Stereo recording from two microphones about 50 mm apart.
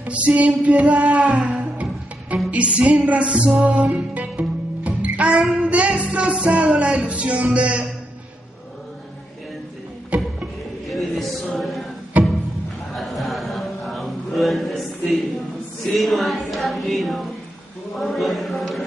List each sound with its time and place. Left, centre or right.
0.0 s music: right
1.3 s music: centre
1.6 s music: right
10.9 s chant: centre
12.1 s music: right
12.9 s a sound: centre